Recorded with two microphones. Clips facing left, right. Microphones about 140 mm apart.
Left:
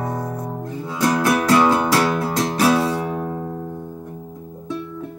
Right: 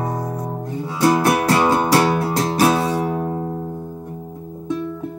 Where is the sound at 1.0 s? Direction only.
30° right (ahead or behind).